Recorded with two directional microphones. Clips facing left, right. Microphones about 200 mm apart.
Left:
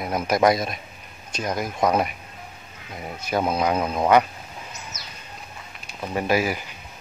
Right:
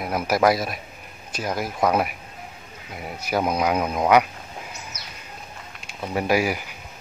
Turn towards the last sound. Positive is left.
turn(degrees=-10)  # may be behind; listen again after turning